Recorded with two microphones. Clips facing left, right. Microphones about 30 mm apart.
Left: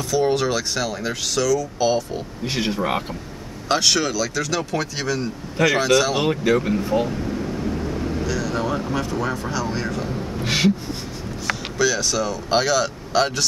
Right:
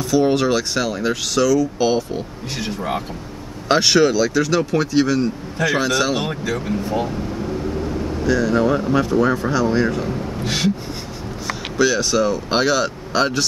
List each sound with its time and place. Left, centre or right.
0.1 s speech: centre
2.5 s speech: centre
3.6 s speech: centre
6.4 s speech: centre
6.7 s vehicle: centre
8.3 s speech: centre
10.4 s gasp: centre
11.8 s speech: centre